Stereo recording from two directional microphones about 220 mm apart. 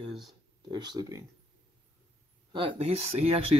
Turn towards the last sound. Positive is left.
turn(degrees=-25)  # may be behind; listen again after turning